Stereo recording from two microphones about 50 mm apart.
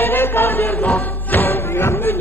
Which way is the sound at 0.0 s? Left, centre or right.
Left.